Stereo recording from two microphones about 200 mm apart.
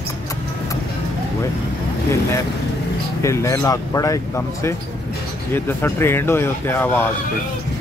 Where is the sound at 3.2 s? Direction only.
15° left (ahead or behind).